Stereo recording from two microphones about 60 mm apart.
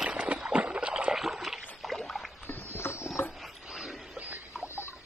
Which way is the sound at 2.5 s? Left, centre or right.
Left.